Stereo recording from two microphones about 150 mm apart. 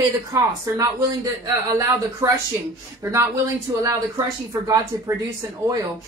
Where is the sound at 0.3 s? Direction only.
25° right (ahead or behind).